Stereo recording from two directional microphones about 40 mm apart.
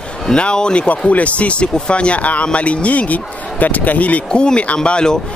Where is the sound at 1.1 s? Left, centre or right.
Left.